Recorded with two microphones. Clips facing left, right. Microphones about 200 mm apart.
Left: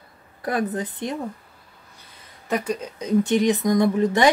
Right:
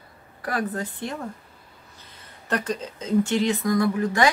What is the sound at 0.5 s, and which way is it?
Speech, 20° left (ahead or behind).